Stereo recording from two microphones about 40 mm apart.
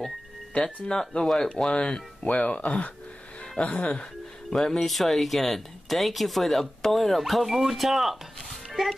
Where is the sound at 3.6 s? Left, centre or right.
Left.